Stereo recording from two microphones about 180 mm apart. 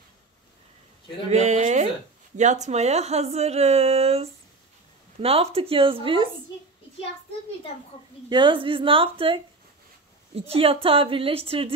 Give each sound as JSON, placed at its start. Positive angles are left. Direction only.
{"t": 1.3, "sound": "a woman's voice", "side_deg": -40}
{"t": 8.3, "sound": "a woman's voice", "side_deg": -25}
{"t": 10.5, "sound": "a woman's voice", "side_deg": -30}